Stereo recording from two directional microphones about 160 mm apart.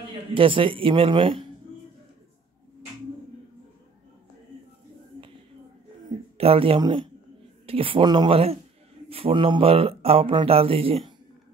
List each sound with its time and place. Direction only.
0.3 s speech: 35° right (ahead or behind)
6.3 s speech: 35° right (ahead or behind)